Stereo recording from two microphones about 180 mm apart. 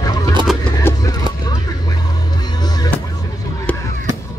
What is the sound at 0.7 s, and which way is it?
Music, 20° left (ahead or behind).